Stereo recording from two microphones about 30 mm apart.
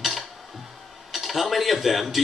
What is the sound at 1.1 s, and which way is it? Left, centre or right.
Speech, centre.